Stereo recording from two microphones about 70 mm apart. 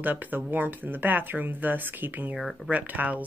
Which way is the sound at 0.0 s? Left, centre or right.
Right.